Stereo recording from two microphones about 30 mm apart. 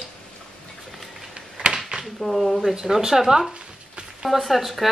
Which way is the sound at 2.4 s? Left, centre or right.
Centre.